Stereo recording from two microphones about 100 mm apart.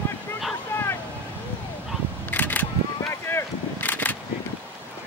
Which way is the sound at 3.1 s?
25° left (ahead or behind).